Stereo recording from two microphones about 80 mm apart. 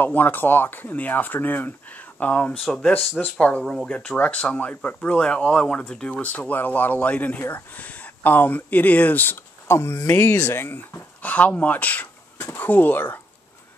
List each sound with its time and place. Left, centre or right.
0.0 s speech: left
2.6 s speech: centre
3.2 s speech: centre